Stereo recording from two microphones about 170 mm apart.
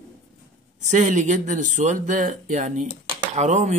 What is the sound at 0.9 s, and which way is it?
Speech, 45° right (ahead or behind).